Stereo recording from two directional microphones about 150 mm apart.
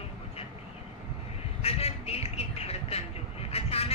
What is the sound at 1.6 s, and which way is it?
Vehicle, 40° left (ahead or behind).